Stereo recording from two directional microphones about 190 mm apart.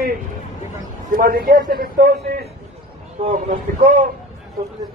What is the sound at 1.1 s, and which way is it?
Speech, 50° right (ahead or behind).